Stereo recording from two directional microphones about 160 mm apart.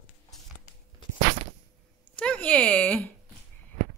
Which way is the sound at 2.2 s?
10° left (ahead or behind).